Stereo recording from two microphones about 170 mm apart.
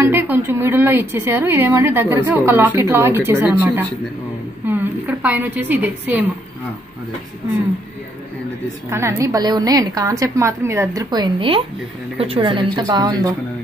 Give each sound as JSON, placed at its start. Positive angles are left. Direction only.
{"t": 0.0, "sound": "a woman's voice", "side_deg": -10}
{"t": 8.9, "sound": "a woman's voice", "side_deg": -15}